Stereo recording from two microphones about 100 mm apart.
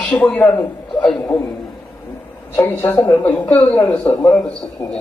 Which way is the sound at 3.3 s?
10° left (ahead or behind).